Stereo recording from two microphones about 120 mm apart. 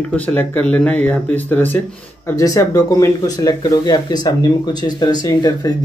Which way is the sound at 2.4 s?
30° left (ahead or behind).